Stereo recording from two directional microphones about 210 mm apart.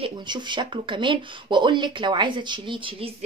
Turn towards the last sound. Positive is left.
turn(degrees=-25)  # may be behind; listen again after turning